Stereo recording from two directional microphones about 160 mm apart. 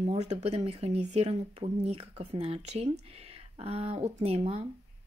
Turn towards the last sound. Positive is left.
turn(degrees=-40)  # may be behind; listen again after turning